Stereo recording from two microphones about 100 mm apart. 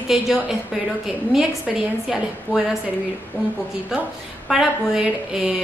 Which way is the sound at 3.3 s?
20° left (ahead or behind).